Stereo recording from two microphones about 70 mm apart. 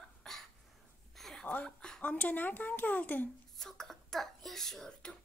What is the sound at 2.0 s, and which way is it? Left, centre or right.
A woman's voice, left.